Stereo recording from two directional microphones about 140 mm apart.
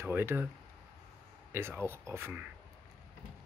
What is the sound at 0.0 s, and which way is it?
Speech, 15° right (ahead or behind).